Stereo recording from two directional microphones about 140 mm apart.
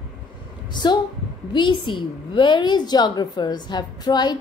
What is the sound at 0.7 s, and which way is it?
A woman's voice, 30° left (ahead or behind).